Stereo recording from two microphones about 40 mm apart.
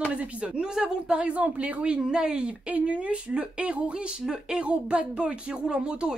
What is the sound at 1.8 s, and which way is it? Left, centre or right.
Speech, right.